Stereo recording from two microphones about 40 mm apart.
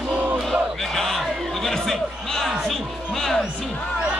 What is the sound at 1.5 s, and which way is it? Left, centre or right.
Music, centre.